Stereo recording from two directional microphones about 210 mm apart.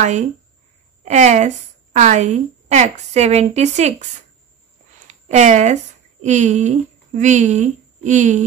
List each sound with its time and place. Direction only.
1.0 s a woman's voice: 35° right (ahead or behind)
5.3 s a woman's voice: 35° right (ahead or behind)